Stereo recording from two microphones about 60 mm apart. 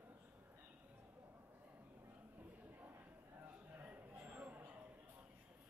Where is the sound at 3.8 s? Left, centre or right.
Right.